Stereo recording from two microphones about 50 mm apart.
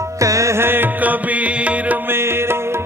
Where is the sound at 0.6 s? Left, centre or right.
Right.